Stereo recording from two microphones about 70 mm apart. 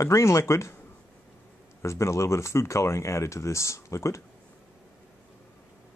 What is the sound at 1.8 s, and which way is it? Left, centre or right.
Speech, left.